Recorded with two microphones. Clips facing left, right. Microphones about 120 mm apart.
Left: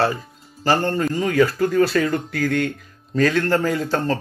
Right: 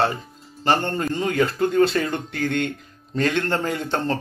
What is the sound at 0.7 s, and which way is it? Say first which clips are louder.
Speech: left 2 dB; 25° right (ahead or behind).